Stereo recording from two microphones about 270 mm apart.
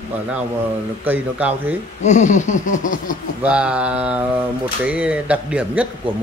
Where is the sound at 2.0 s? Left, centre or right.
Left.